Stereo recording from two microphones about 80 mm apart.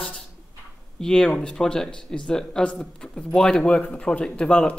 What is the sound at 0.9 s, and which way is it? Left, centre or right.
Speech, centre.